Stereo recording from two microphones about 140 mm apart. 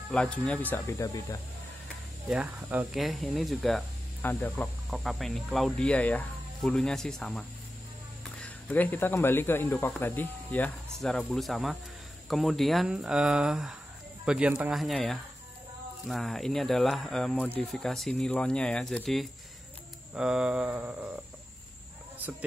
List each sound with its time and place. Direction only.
0.1 s speech: 10° left (ahead or behind)
0.9 s speech: 25° left (ahead or behind)
2.2 s speech: 5° right (ahead or behind)
4.2 s speech: 15° left (ahead or behind)
4.8 s speech: centre (ahead or behind)